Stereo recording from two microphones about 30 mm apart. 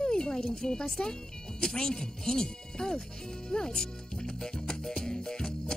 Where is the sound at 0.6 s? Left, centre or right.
Left.